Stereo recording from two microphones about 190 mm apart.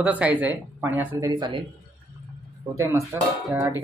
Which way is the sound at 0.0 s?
5° right (ahead or behind).